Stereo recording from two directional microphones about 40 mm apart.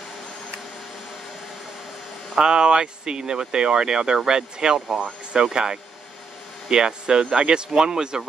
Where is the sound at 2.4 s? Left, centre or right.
Centre.